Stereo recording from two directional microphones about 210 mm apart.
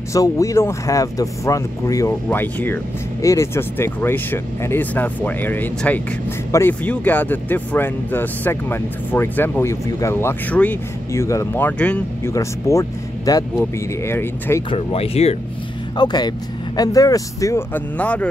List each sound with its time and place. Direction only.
0.1 s speech: 15° left (ahead or behind)
14.7 s speech: 30° left (ahead or behind); by 18.2 s 5° left (ahead or behind)